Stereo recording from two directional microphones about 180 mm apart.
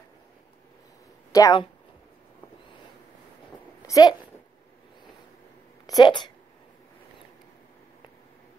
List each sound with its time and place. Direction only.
1.3 s speech: 20° left (ahead or behind)
3.8 s speech: 20° left (ahead or behind)
5.9 s speech: 25° left (ahead or behind)